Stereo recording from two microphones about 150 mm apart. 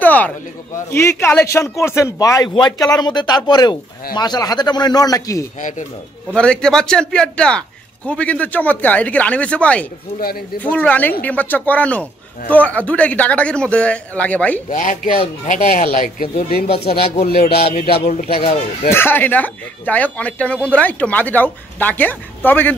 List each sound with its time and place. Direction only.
0.0 s a sound: 10° left (ahead or behind)
0.7 s speech: 15° left (ahead or behind)
5.6 s speech: 55° left (ahead or behind)
6.3 s speech: 5° left (ahead or behind)
15.4 s speech: 60° left (ahead or behind)
15.9 s speech: 70° left (ahead or behind)
16.6 s speech: 40° left (ahead or behind)
17.3 s a man's voice: 90° left
18.3 s speech: 40° left (ahead or behind)
18.9 s speech: 15° left (ahead or behind)